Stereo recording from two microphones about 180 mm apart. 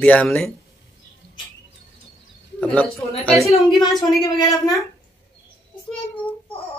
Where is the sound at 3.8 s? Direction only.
20° left (ahead or behind).